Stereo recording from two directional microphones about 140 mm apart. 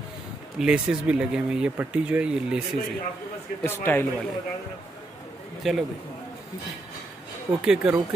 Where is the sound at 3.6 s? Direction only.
15° left (ahead or behind).